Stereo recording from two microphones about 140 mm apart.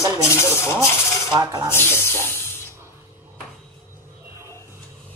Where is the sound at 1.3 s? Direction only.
30° right (ahead or behind).